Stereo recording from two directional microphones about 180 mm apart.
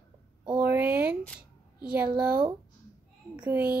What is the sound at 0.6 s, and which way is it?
Speech, 10° right (ahead or behind).